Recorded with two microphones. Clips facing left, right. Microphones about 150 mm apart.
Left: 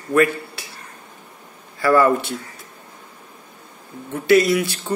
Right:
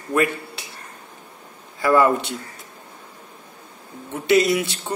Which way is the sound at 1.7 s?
20° right (ahead or behind).